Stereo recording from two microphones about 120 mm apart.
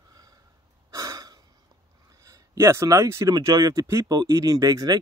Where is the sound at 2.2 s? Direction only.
25° right (ahead or behind).